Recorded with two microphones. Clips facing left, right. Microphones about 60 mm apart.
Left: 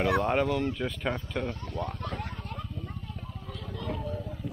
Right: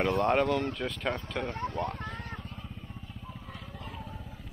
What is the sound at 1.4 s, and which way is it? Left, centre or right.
Speech, right.